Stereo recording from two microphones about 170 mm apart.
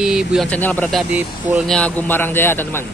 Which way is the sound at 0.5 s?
10° left (ahead or behind).